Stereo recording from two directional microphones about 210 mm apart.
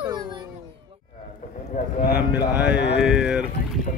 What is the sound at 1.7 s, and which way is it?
Speech, 35° left (ahead or behind).